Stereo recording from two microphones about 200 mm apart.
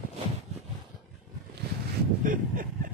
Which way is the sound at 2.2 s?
45° right (ahead or behind).